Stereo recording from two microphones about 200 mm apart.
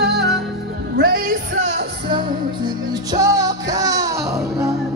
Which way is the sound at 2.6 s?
20° right (ahead or behind).